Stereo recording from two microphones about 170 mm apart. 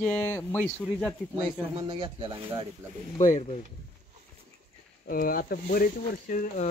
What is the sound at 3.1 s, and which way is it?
Speech, 45° left (ahead or behind).